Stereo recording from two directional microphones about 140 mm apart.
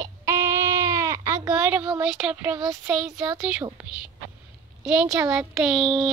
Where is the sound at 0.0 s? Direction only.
20° right (ahead or behind).